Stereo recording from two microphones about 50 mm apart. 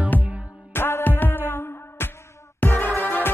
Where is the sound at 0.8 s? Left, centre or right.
Left.